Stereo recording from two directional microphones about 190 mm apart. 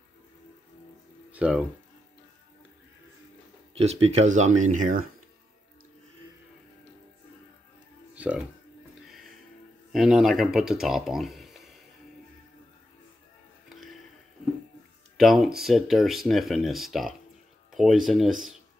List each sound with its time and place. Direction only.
1.3 s speech: 5° right (ahead or behind)
3.7 s speech: 35° right (ahead or behind)
8.1 s music: 5° right (ahead or behind)
9.9 s speech: centre (ahead or behind)
15.1 s speech: centre (ahead or behind)